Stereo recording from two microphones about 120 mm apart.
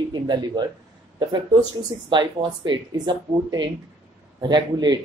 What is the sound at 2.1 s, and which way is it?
Speech, 40° right (ahead or behind).